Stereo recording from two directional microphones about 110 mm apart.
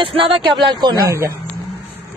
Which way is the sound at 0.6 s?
40° right (ahead or behind).